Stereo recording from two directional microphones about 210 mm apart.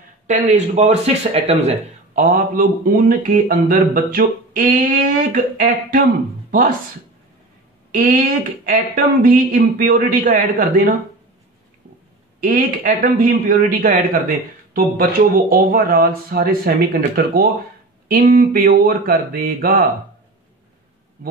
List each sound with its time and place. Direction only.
0.3 s speech: 30° right (ahead or behind)
7.9 s speech: 40° right (ahead or behind)
12.4 s speech: 40° right (ahead or behind)